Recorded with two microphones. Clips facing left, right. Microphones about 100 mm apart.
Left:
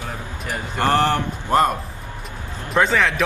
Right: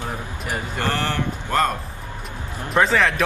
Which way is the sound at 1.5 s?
20° left (ahead or behind).